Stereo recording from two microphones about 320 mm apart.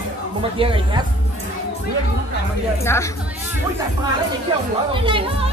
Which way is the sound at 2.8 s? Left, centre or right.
Centre.